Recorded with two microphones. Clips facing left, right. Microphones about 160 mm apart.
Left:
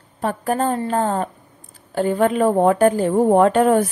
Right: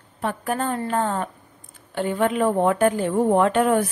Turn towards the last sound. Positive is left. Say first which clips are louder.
# left 4 dB
turn(degrees=40)  # may be behind; listen again after turning